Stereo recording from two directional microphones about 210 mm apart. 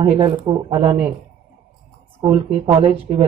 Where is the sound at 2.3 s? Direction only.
25° right (ahead or behind).